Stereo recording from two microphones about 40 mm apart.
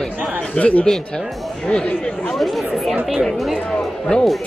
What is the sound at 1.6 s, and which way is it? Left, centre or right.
Speech, centre.